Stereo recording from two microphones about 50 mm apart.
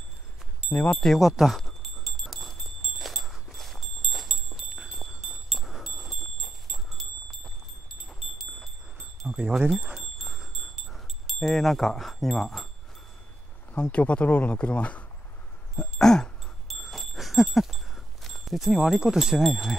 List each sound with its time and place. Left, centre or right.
0.9 s speech: centre
1.6 s wind chime: centre
9.3 s speech: right
9.9 s wind chime: centre
11.3 s speech: centre
13.7 s speech: left
15.7 s a sound: centre
16.6 s a sound: centre